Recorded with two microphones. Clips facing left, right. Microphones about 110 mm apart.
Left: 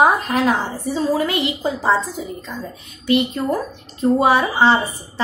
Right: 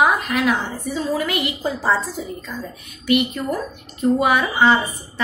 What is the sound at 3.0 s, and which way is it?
A woman's voice, 30° left (ahead or behind).